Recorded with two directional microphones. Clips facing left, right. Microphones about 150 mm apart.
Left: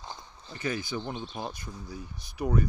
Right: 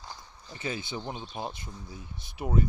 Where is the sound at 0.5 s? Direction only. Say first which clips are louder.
Left 3 dB; 25° right (ahead or behind).